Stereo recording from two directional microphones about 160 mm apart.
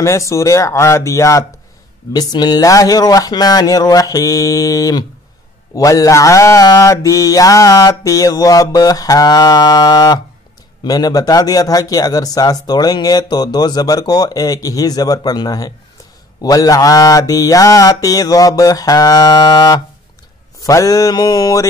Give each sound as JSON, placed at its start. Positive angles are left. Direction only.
{"t": 0.0, "sound": "speech", "side_deg": 20}